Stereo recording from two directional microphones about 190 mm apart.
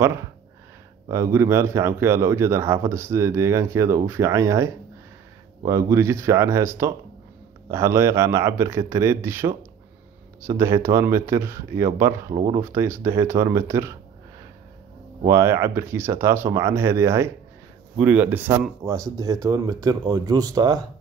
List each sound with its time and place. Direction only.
1.0 s speech: 15° right (ahead or behind)
12.4 s speech: 30° right (ahead or behind)
12.6 s speech: 15° right (ahead or behind)
15.2 s speech: 15° right (ahead or behind)